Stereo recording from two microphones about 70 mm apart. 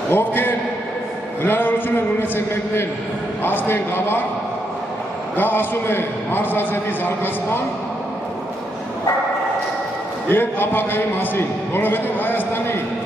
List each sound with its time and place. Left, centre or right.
0.1 s a man's voice: left
5.4 s a man's voice: left
10.3 s a man's voice: left